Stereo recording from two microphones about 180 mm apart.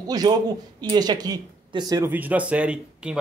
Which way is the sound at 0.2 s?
25° right (ahead or behind).